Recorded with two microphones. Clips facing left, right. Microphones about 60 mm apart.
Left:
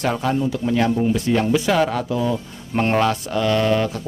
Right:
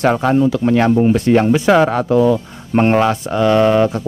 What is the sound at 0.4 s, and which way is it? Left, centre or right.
Speech, right.